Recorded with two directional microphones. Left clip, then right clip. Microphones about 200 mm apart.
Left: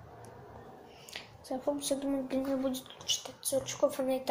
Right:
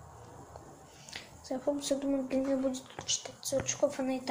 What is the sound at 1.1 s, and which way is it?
Speech, 5° right (ahead or behind).